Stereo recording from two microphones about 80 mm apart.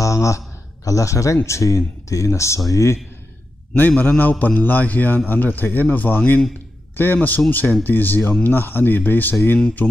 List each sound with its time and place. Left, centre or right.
0.0 s a sound: left
0.8 s speech: left
3.7 s a man's voice: left